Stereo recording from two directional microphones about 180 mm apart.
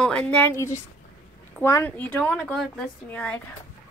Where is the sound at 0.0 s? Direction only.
5° left (ahead or behind).